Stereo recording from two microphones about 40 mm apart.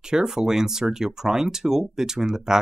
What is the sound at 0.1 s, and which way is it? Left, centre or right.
Speech, centre.